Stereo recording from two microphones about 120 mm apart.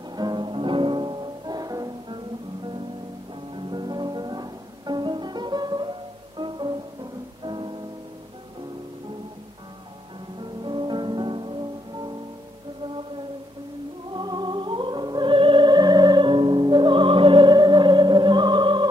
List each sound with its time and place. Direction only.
0.1 s music: 35° right (ahead or behind)
3.5 s music: 40° right (ahead or behind)
10.4 s music: 40° right (ahead or behind)
14.1 s music: 40° right (ahead or behind)